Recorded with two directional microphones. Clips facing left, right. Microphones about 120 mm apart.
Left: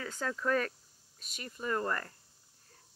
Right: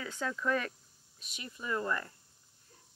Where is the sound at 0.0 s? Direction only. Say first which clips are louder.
Even; 40° left (ahead or behind).